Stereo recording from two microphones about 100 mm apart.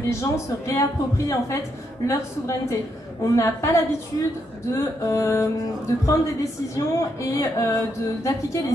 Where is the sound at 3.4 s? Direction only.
30° left (ahead or behind).